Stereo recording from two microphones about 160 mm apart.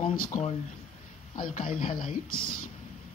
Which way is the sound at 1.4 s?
60° left (ahead or behind).